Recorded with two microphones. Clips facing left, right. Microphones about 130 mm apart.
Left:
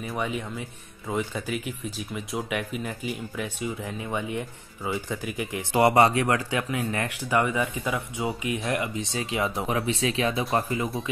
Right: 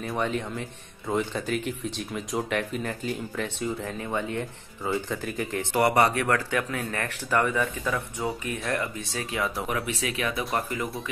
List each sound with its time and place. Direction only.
0.0 s speech: 5° left (ahead or behind); by 10.9 s 25° left (ahead or behind)